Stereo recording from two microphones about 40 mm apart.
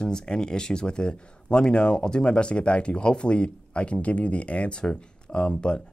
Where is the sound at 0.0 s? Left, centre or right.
Centre.